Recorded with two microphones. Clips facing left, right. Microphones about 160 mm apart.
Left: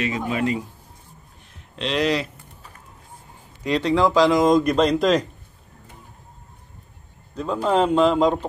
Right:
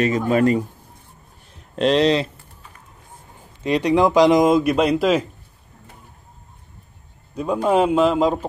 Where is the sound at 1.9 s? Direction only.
30° right (ahead or behind).